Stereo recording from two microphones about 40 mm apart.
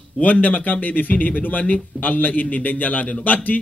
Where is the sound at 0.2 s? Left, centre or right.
Left.